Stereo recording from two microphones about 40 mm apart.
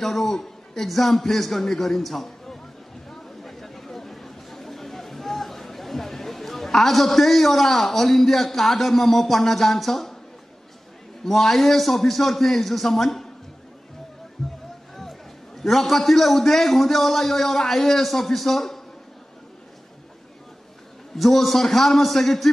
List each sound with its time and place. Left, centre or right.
0.0 s a man's voice: centre
3.1 s chatter: centre
11.2 s a man's voice: centre
14.4 s music: centre
15.0 s a man's voice: centre
21.2 s a man's voice: centre